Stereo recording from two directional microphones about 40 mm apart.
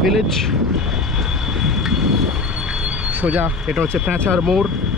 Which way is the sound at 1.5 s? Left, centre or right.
Centre.